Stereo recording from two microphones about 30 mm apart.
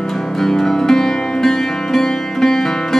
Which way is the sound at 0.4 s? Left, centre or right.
Centre.